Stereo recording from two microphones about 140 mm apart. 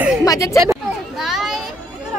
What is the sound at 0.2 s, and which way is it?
Speech, 25° left (ahead or behind).